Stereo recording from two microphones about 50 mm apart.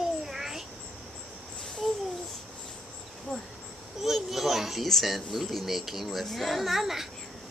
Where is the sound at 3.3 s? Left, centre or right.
Centre.